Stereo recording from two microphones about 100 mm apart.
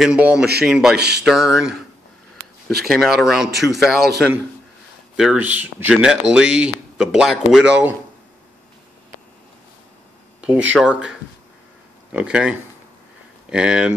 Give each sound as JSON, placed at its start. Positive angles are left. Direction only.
{"t": 0.0, "sound": "speech", "side_deg": -10}
{"t": 2.8, "sound": "speech", "side_deg": 0}
{"t": 5.1, "sound": "speech", "side_deg": -5}
{"t": 10.4, "sound": "speech", "side_deg": -15}